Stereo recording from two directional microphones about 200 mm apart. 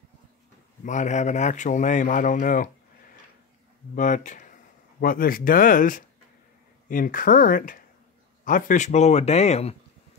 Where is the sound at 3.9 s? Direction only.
40° left (ahead or behind).